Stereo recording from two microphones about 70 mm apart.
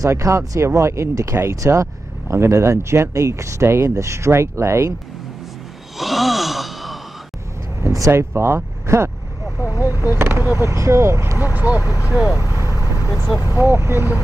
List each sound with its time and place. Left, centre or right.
0.0 s speech: right
5.9 s sigh: centre
8.4 s speech: right
9.6 s vehicle: left
10.1 s speech: right
11.5 s speech: right
12.3 s speech: left
12.7 s vehicle: left
13.6 s speech: right